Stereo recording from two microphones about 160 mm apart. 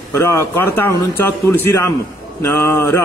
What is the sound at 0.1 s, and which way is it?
Speech, 15° left (ahead or behind).